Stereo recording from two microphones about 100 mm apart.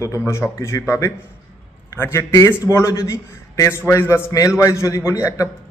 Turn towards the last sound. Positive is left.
turn(degrees=30)  # may be behind; listen again after turning